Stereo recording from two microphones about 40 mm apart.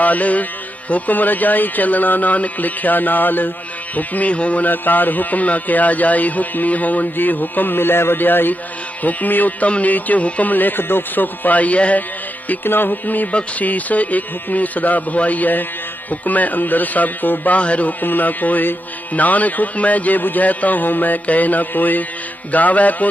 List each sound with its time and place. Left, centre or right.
0.0 s speech: left
4.6 s speech: left
10.5 s speech: left
12.6 s speech: left
13.3 s speech: left
13.7 s speech: left
17.6 s speech: left
18.0 s speech: left